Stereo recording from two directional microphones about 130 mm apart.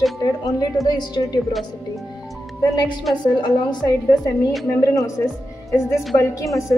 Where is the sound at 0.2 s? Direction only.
30° left (ahead or behind).